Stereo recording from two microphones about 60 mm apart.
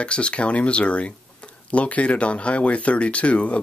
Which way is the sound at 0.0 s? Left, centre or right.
Centre.